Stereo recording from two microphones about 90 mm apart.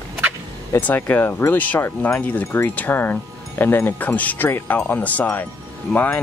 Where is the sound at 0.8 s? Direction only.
20° left (ahead or behind).